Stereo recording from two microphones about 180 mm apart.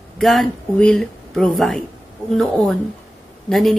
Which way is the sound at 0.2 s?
Centre (ahead or behind).